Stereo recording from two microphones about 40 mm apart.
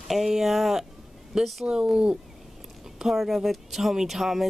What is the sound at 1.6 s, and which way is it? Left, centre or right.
Speech, right.